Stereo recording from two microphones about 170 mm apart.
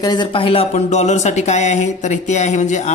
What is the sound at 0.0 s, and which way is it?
A man's voice, 25° left (ahead or behind).